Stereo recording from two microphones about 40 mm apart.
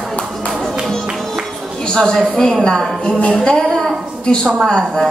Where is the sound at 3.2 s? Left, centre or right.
Left.